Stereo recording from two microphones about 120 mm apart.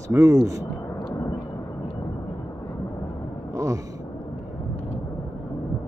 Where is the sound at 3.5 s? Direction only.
25° right (ahead or behind).